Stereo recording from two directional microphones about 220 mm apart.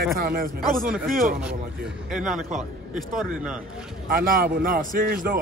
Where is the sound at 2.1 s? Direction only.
5° right (ahead or behind).